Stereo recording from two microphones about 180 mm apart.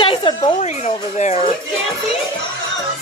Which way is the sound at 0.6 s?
40° left (ahead or behind).